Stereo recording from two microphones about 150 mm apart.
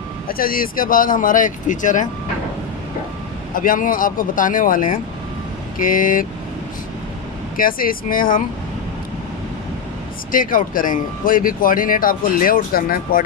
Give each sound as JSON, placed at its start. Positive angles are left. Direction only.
{"t": 0.3, "sound": "speech", "side_deg": 75}
{"t": 3.5, "sound": "speech", "side_deg": 65}
{"t": 7.5, "sound": "speech", "side_deg": 70}
{"t": 10.3, "sound": "speech", "side_deg": 65}